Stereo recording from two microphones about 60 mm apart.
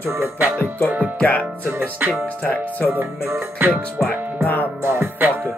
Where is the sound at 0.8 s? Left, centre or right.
Right.